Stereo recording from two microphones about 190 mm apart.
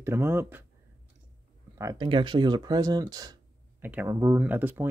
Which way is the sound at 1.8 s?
20° right (ahead or behind).